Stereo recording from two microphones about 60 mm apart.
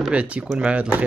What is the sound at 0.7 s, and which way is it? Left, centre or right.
Speech, right.